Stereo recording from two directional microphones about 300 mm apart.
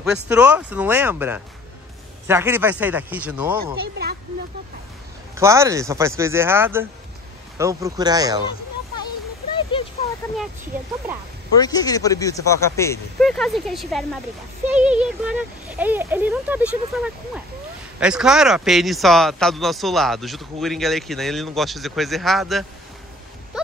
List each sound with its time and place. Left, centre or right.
0.0 s speech: centre
3.8 s speech: right
5.3 s speech: centre
11.6 s speech: centre